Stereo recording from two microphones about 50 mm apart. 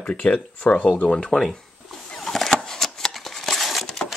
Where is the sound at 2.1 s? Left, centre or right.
Centre.